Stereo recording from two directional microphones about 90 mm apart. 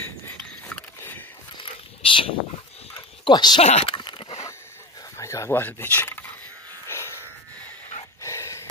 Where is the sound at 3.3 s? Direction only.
50° left (ahead or behind).